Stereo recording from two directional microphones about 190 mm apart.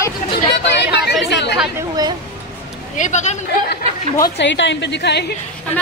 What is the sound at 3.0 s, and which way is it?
Speech, 40° left (ahead or behind).